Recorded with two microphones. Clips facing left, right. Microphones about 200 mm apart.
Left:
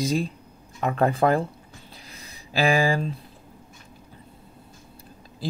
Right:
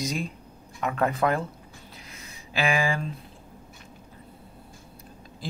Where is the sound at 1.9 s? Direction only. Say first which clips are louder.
Even; 35° left (ahead or behind).